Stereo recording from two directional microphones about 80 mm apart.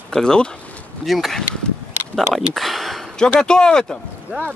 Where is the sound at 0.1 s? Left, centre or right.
Centre.